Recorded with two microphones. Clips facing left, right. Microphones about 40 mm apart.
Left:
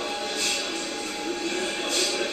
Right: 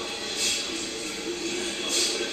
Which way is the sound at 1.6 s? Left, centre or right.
Centre.